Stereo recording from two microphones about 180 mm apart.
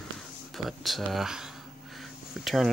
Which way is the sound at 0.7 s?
Centre (ahead or behind).